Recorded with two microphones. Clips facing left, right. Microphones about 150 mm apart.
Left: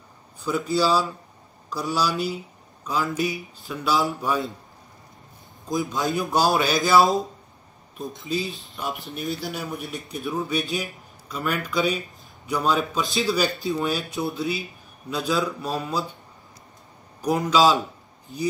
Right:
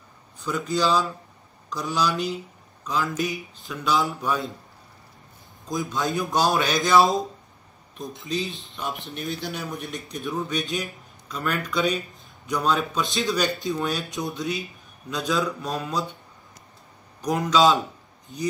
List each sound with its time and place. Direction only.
0.5 s a man's voice: 10° left (ahead or behind)
6.1 s speech: 10° left (ahead or behind)
8.3 s speech: centre (ahead or behind)
17.2 s speech: 10° left (ahead or behind)